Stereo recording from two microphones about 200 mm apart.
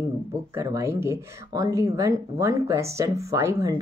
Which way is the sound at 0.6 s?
15° right (ahead or behind).